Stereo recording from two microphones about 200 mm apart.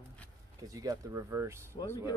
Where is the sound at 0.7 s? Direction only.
15° right (ahead or behind).